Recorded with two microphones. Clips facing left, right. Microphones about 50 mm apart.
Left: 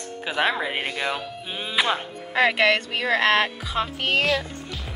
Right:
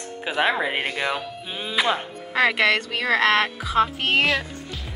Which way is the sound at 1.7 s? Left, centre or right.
Centre.